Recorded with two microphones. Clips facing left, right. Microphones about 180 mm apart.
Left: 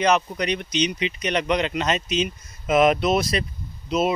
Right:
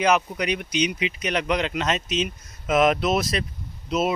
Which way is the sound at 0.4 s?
10° right (ahead or behind).